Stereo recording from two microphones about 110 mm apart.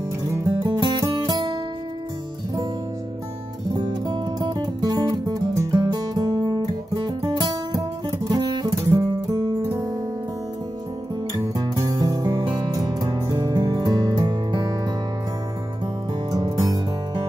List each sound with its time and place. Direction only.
0.7 s music: 40° right (ahead or behind)
3.6 s music: 40° right (ahead or behind)
7.1 s guitar: 35° right (ahead or behind)
11.3 s music: 35° right (ahead or behind)
16.3 s music: 35° right (ahead or behind)